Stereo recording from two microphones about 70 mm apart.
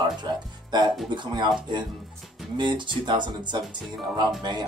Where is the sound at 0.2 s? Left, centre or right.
Right.